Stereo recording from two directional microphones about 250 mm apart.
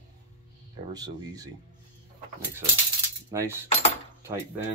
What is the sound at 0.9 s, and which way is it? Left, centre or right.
Speech, centre.